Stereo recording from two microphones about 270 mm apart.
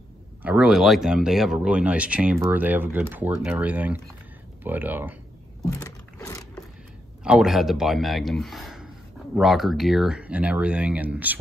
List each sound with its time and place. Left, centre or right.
0.4 s speech: centre
5.6 s a sound: centre
7.2 s speech: centre